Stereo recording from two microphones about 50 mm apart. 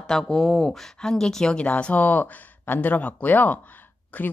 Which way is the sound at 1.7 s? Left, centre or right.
Left.